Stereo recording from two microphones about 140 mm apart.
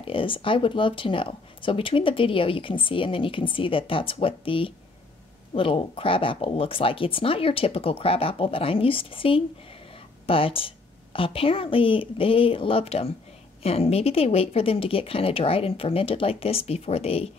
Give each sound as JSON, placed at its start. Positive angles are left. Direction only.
{"t": 0.0, "sound": "a woman's voice", "side_deg": 40}